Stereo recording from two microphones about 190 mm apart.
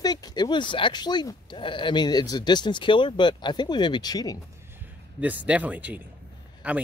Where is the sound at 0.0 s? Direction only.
20° left (ahead or behind).